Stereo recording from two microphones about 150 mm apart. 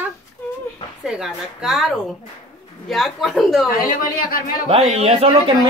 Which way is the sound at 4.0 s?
70° left (ahead or behind).